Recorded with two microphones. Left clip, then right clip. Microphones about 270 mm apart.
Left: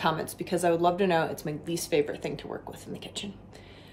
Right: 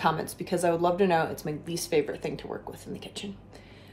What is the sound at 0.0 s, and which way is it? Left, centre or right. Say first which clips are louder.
A woman's voice: right 1 dB; centre.